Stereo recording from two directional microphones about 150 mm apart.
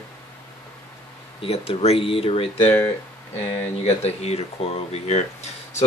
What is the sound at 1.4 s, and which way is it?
Speech, 40° left (ahead or behind).